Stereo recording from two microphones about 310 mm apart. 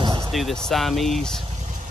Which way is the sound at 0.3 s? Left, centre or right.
Centre.